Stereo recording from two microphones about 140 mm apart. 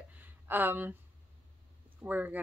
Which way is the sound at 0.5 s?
15° right (ahead or behind).